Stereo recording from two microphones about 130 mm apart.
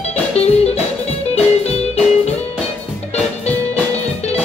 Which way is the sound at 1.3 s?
50° left (ahead or behind).